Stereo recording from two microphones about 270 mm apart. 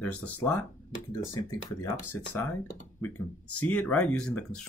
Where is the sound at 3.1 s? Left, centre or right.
Left.